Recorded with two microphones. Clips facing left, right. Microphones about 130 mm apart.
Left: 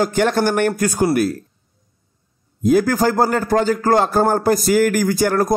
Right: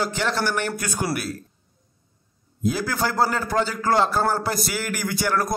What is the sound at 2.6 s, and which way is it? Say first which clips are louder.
A man's voice: left 9 dB; 45° left (ahead or behind).